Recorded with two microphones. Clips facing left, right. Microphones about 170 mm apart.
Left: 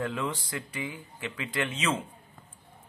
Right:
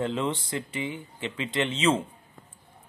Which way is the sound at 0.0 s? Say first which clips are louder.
Right 4 dB; 25° right (ahead or behind).